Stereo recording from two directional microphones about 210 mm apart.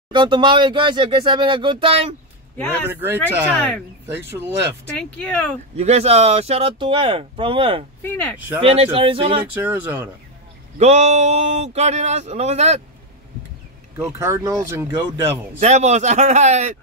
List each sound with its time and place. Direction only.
0.1 s speech: 20° right (ahead or behind)
2.5 s speech: 10° left (ahead or behind)
2.9 s speech: 10° right (ahead or behind)
3.5 s speech: 5° left (ahead or behind)
4.1 s speech: 10° right (ahead or behind)
4.8 s speech: 5° left (ahead or behind)
5.8 s speech: 30° right (ahead or behind)
8.0 s speech: 10° left (ahead or behind)
8.5 s speech: 25° right (ahead or behind)
9.5 s speech: 10° right (ahead or behind)
10.8 s speech: 30° right (ahead or behind)
14.1 s speech: 15° right (ahead or behind)
15.6 s speech: 35° right (ahead or behind)